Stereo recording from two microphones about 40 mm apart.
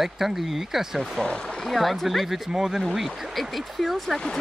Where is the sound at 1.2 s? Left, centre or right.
Left.